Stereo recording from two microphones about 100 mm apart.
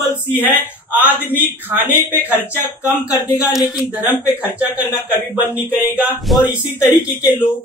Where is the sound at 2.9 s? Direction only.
30° left (ahead or behind).